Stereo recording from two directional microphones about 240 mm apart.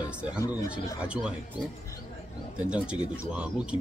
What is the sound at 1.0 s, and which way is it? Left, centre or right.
Speech, centre.